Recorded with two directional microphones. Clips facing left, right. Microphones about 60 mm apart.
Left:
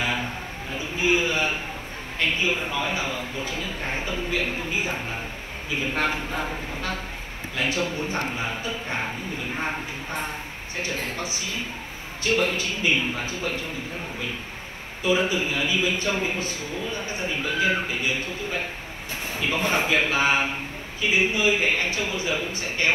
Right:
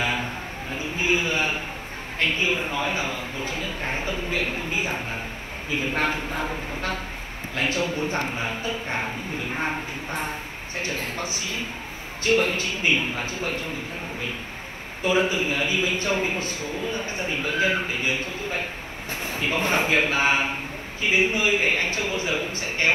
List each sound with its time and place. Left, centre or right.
0.0 s a sound: right
2.1 s a man's voice: right
7.5 s music: right
7.9 s a man's voice: right
11.1 s a man's voice: right
15.0 s a man's voice: right
17.4 s music: right
19.2 s a man's voice: right